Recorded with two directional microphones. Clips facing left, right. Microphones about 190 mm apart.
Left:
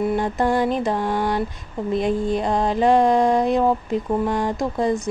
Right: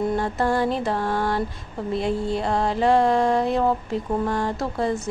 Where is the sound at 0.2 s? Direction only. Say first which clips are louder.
Left 2 dB; 15° left (ahead or behind).